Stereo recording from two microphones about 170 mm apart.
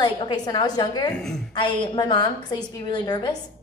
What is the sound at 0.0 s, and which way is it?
A woman's voice, 25° left (ahead or behind).